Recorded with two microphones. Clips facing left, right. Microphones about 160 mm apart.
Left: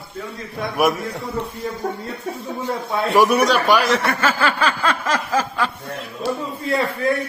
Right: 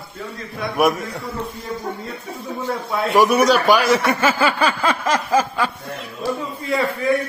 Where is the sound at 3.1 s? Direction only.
Centre (ahead or behind).